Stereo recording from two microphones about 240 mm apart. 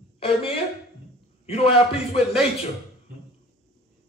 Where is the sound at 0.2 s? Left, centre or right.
Left.